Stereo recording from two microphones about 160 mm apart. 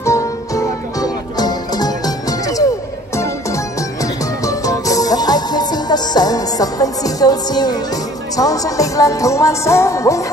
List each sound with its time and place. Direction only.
0.0 s music: 20° left (ahead or behind)